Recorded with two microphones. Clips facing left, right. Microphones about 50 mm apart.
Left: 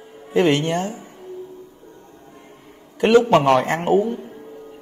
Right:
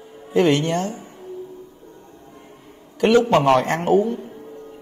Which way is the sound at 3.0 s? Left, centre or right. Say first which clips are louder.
Left 1 dB; left.